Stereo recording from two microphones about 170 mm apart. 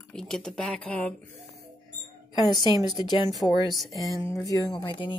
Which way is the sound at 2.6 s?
25° left (ahead or behind).